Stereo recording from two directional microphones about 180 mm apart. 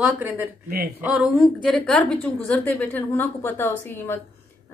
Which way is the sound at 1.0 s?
Centre (ahead or behind).